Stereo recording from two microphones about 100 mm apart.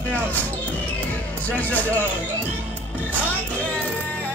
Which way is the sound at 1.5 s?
15° left (ahead or behind).